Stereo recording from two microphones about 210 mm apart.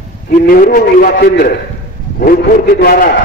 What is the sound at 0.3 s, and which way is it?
Speech, 40° left (ahead or behind).